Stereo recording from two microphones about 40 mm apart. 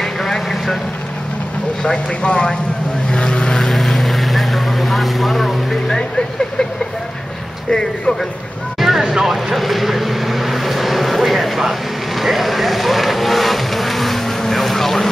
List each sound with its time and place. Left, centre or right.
0.0 s vehicle: centre
1.8 s speech: left
3.1 s vehicle: left
3.7 s vehicle: centre
7.7 s speech: centre
8.7 s a sound: centre
9.0 s speech: centre
12.2 s vehicle: centre